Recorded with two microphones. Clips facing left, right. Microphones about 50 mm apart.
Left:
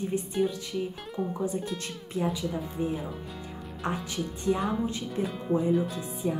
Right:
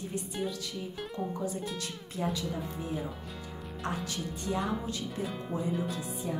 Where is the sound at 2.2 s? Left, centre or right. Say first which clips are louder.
Left 4 dB; centre.